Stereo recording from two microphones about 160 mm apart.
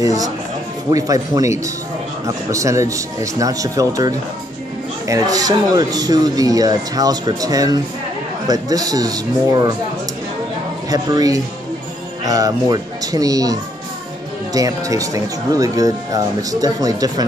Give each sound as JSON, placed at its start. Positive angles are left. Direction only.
{"t": 0.0, "sound": "speech", "side_deg": -20}
{"t": 10.9, "sound": "speech", "side_deg": -25}